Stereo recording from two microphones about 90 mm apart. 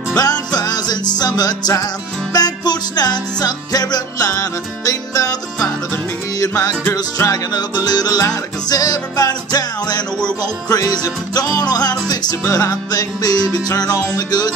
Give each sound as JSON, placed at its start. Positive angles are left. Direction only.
{"t": 0.1, "sound": "music", "side_deg": 45}